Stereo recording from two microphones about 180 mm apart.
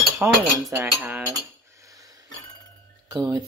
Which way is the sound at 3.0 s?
20° right (ahead or behind).